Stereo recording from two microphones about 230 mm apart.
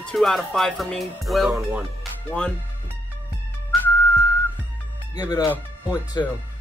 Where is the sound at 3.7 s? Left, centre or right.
Centre.